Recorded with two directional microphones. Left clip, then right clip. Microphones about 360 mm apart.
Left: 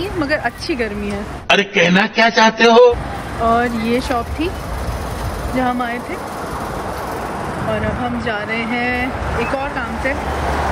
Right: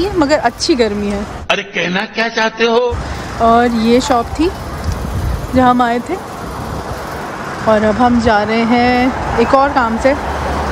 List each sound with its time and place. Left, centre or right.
0.0 s speech: centre
1.5 s mantra: centre
3.4 s speech: centre
5.6 s speech: centre
8.0 s speech: centre